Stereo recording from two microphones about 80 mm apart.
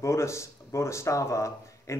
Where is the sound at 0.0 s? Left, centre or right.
Left.